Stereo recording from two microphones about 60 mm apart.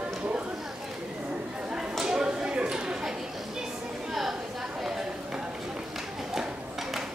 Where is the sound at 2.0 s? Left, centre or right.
Centre.